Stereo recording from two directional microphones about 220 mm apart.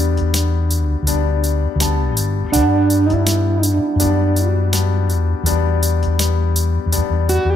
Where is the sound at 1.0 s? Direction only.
Centre (ahead or behind).